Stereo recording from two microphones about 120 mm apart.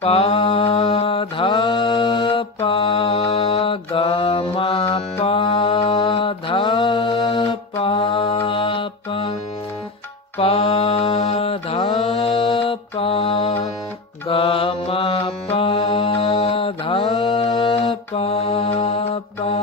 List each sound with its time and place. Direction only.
0.0 s mantra: 55° left (ahead or behind)
10.3 s mantra: 55° left (ahead or behind)